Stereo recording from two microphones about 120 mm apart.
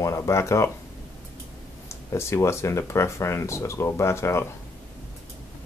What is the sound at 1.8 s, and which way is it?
Speech, 20° left (ahead or behind).